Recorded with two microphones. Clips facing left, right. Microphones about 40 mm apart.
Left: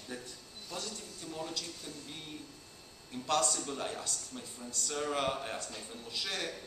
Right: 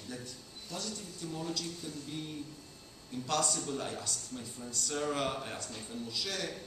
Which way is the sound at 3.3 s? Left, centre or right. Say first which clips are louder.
Left 1 dB; centre.